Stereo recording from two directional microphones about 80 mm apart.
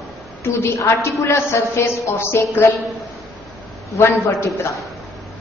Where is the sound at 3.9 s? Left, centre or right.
Left.